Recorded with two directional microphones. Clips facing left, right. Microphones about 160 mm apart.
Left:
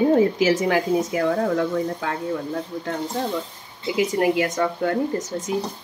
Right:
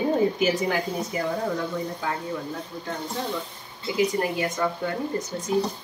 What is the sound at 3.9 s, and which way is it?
A woman's voice, 75° left (ahead or behind).